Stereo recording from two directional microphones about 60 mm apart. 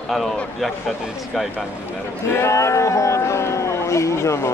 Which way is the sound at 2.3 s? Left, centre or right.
Left.